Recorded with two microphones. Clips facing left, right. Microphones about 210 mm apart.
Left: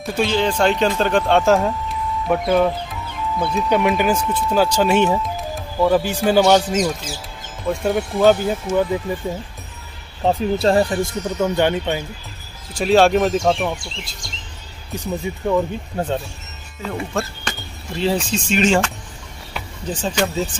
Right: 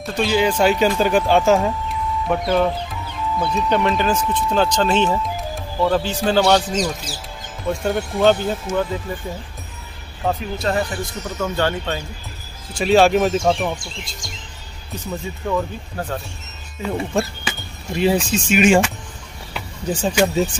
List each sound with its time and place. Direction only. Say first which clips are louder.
0.0 s speech: right 1 dB; centre (ahead or behind)
9.1 s speech: left 4 dB; 20° left (ahead or behind)
10.2 s speech: left 5 dB; 30° left (ahead or behind)
11.2 s speech: left 3 dB; 20° left (ahead or behind)
12.7 s speech: even; centre (ahead or behind)
15.0 s speech: left 3 dB; 15° left (ahead or behind)
17.1 s speech: right 3 dB; 15° right (ahead or behind)
19.9 s speech: right 3 dB; 10° right (ahead or behind)